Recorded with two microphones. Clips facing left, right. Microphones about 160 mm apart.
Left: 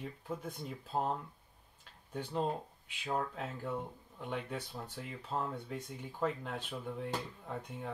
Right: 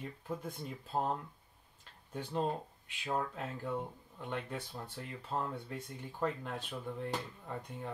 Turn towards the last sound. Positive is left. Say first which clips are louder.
# even
turn(degrees=5)  # may be behind; listen again after turning